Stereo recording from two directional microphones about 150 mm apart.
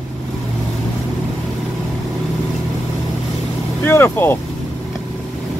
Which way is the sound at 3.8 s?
15° left (ahead or behind).